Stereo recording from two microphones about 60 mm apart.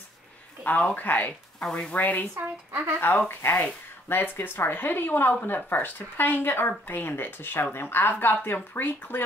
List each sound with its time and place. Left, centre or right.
0.7 s speech: left
1.6 s speech: centre
2.0 s speech: left
2.3 s speech: right
3.3 s speech: left